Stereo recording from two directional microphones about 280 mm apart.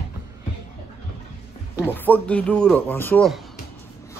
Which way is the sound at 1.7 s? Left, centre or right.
Centre.